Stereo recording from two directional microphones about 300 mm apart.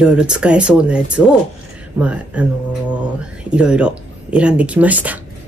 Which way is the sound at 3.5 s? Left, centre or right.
Centre.